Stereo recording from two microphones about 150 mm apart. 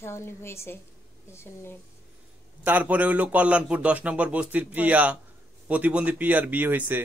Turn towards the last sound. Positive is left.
turn(degrees=-15)  # may be behind; listen again after turning